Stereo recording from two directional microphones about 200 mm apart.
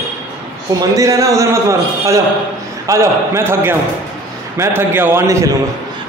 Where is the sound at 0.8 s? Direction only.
15° right (ahead or behind).